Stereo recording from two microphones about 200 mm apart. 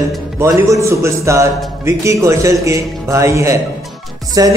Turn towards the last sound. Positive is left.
turn(degrees=-20)  # may be behind; listen again after turning